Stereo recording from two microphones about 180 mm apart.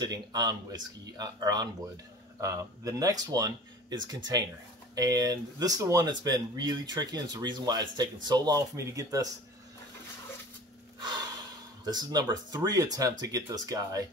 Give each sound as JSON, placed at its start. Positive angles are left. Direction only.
{"t": 0.0, "sound": "speech", "side_deg": -20}
{"t": 11.8, "sound": "speech", "side_deg": -20}